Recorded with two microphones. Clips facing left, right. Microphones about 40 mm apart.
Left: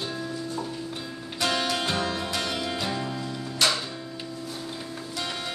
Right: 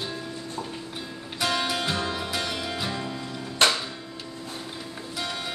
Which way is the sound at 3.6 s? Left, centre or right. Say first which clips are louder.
Right 3 dB; right.